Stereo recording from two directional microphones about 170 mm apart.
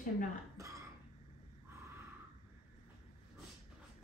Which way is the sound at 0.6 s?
20° right (ahead or behind).